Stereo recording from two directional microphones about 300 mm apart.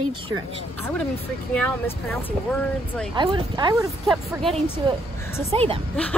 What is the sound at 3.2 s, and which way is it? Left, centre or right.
Speech, centre.